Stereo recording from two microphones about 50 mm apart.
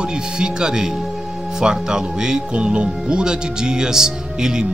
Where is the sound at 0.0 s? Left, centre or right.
Centre.